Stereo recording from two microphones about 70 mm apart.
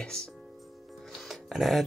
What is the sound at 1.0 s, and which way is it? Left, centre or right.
Music, centre.